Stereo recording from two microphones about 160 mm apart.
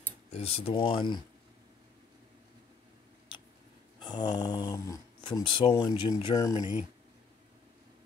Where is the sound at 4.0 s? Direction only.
25° left (ahead or behind).